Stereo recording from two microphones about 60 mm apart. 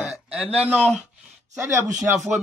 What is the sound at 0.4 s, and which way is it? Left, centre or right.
Speech, right.